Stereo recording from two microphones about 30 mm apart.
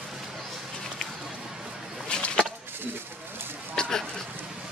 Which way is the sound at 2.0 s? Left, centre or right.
Left.